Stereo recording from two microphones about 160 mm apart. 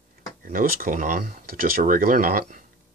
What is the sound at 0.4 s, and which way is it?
Speech, 60° right (ahead or behind).